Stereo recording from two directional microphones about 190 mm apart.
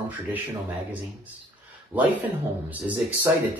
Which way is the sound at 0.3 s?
10° right (ahead or behind).